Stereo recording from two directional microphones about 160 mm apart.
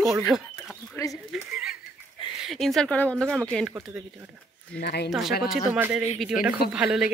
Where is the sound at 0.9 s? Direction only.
20° left (ahead or behind).